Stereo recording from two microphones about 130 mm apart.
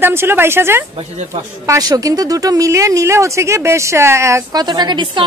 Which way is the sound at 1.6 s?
30° right (ahead or behind).